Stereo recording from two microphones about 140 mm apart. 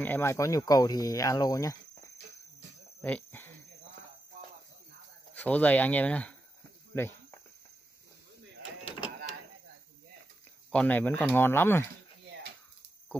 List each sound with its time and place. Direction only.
0.0 s speech: 15° left (ahead or behind)
3.0 s a sound: 10° left (ahead or behind)
5.3 s speech: 10° left (ahead or behind)
6.9 s snake: 20° left (ahead or behind)
10.7 s speech: 10° left (ahead or behind)